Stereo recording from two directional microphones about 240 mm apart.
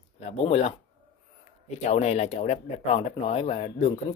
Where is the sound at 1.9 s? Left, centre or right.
Left.